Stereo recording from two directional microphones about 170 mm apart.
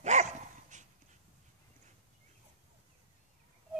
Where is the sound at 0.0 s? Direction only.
45° right (ahead or behind).